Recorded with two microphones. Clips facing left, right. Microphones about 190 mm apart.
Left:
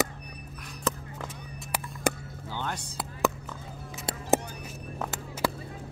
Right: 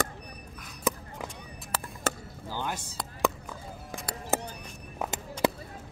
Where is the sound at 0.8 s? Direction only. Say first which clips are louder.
Right 1 dB; 10° right (ahead or behind).